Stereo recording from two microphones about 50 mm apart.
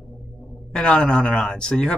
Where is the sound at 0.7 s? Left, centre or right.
Centre.